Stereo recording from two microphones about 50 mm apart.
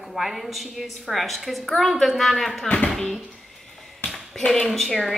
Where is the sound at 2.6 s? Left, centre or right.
Left.